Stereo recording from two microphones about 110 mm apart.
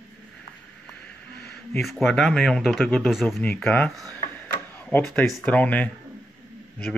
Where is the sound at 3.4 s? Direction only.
15° left (ahead or behind).